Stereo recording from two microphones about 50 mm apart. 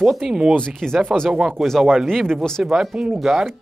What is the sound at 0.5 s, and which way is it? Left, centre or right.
Speech, centre.